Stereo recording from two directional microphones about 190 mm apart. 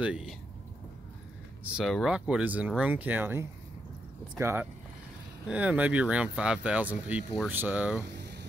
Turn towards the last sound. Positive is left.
turn(degrees=-5)  # may be behind; listen again after turning